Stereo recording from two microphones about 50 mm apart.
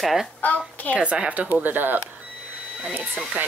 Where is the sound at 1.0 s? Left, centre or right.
Right.